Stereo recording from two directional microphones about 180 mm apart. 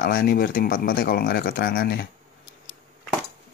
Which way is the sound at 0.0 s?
55° left (ahead or behind).